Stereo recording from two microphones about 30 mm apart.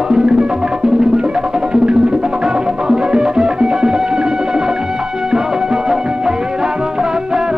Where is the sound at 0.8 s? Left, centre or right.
Right.